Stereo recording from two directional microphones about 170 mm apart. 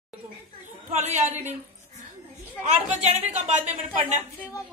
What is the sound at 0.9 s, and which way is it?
A woman's voice, 45° right (ahead or behind).